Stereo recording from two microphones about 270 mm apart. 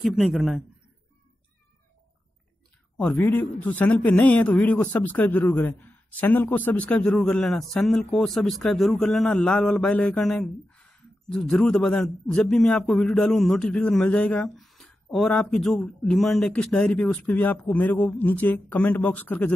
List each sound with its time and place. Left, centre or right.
0.0 s a man's voice: centre
3.0 s a man's voice: centre